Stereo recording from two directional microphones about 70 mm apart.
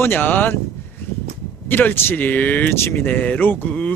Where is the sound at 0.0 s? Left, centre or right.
Left.